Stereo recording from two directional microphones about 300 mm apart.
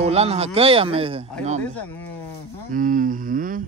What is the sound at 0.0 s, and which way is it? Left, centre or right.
Speech, right.